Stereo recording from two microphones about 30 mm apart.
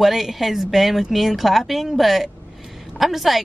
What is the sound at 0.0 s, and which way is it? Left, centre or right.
Speech, centre.